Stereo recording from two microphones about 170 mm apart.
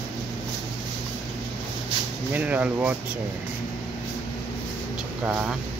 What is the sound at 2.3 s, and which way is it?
Speech, 10° right (ahead or behind).